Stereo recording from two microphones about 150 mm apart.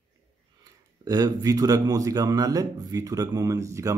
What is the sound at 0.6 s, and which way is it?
Speech, 25° right (ahead or behind).